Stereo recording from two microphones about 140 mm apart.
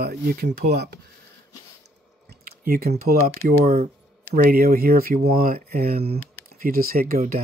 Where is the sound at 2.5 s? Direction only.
90° right.